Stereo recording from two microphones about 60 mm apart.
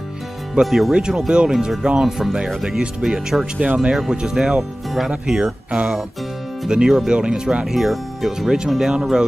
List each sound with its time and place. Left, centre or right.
0.6 s speech: centre
3.5 s speech: right
3.9 s speech: centre
7.6 s speech: centre